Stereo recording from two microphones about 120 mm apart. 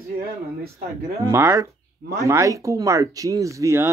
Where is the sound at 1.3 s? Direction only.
25° right (ahead or behind).